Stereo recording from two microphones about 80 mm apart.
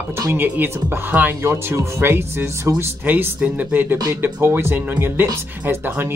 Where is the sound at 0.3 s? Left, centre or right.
Right.